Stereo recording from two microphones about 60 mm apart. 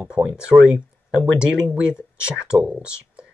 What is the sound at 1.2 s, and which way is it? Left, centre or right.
Speech, centre.